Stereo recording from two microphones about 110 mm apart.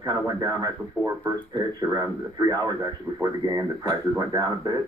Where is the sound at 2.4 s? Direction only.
35° right (ahead or behind).